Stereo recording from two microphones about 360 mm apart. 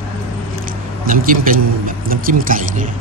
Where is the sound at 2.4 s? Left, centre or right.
Right.